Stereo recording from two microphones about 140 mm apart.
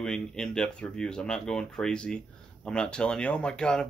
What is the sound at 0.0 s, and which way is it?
Speech, 5° left (ahead or behind).